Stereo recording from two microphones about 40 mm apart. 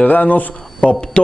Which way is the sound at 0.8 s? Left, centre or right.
Left.